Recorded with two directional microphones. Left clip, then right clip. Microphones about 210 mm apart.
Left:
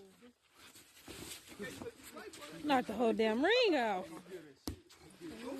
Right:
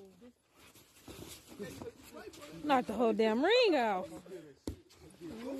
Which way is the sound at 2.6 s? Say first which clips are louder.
Right 2 dB; 5° right (ahead or behind).